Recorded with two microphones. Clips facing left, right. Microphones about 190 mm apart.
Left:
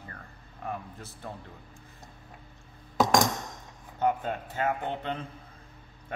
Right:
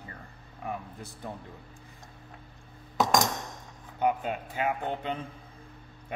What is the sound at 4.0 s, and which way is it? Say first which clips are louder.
A man's voice: even; 10° right (ahead or behind).